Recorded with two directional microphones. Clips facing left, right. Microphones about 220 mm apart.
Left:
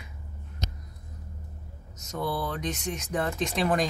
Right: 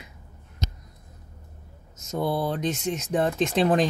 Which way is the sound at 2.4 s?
30° right (ahead or behind).